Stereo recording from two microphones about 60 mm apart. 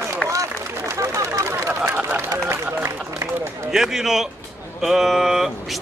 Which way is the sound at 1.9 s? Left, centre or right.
Right.